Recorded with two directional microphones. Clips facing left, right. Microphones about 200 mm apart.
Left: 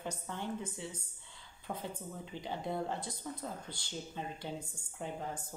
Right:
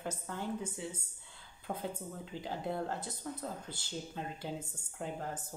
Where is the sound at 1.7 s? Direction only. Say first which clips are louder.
Right 1 dB; 25° right (ahead or behind).